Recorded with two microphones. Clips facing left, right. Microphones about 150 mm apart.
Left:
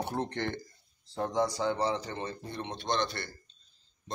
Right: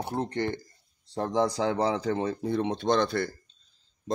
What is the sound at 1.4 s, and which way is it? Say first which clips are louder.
Speech: right 4 dB; 90° right.